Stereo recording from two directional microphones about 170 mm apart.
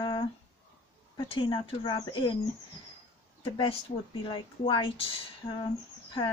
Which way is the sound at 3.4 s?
30° left (ahead or behind).